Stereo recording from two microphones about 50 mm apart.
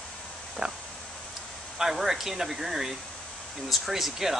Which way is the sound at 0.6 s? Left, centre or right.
Right.